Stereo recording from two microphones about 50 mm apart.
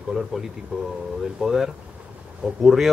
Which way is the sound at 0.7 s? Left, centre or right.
Centre.